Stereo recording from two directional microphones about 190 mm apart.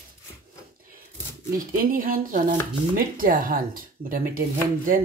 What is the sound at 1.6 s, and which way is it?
Speech, 50° right (ahead or behind).